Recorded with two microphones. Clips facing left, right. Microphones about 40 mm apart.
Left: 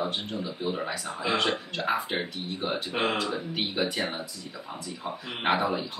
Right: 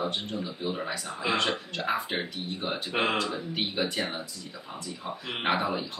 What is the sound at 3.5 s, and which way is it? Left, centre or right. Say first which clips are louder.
Speech: left 1 dB; centre.